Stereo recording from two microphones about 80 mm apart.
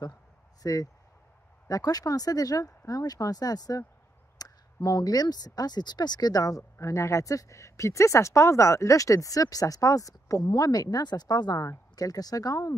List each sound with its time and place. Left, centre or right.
0.6 s speech: left
4.4 s a sound: left
4.8 s speech: left
10.4 s a woman's voice: left